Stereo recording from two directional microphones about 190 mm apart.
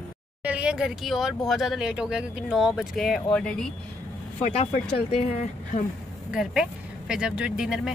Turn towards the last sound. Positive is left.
turn(degrees=-5)  # may be behind; listen again after turning